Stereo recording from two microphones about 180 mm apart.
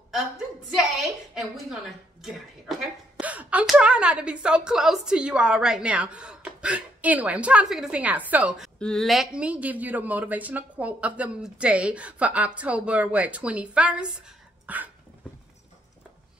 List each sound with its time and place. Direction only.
0.7 s a woman's voice: centre (ahead or behind)
3.2 s a woman's voice: 10° right (ahead or behind)
8.7 s speech: 5° left (ahead or behind)